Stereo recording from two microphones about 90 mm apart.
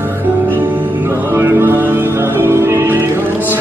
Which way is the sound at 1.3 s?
25° right (ahead or behind).